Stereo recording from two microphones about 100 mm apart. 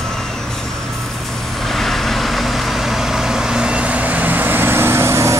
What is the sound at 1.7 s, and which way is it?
Vehicle, centre (ahead or behind).